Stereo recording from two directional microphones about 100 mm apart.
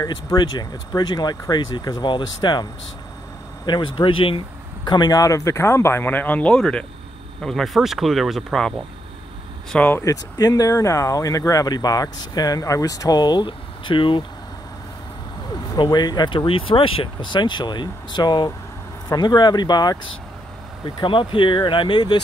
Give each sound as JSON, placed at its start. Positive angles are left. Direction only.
{"t": 0.0, "sound": "speech", "side_deg": 35}
{"t": 4.8, "sound": "speech", "side_deg": 45}
{"t": 10.3, "sound": "speech", "side_deg": 40}
{"t": 15.8, "sound": "speech", "side_deg": 45}
{"t": 20.8, "sound": "speech", "side_deg": 55}